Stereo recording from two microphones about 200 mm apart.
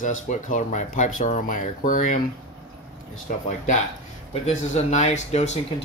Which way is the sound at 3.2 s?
40° left (ahead or behind).